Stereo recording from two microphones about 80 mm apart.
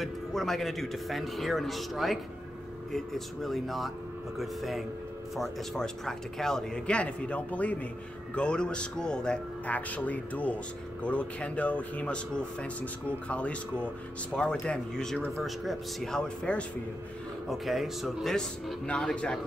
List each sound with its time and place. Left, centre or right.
0.0 s speech: centre
17.5 s speech: centre
18.9 s speech: centre